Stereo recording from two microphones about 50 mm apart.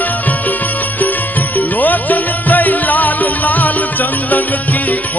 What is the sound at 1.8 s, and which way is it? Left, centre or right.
Music, left.